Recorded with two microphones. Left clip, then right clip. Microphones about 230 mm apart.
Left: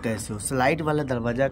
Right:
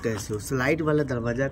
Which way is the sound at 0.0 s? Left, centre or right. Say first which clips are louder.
Right 1 dB; centre.